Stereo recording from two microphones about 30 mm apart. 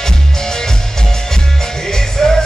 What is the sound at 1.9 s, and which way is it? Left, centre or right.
Music, centre.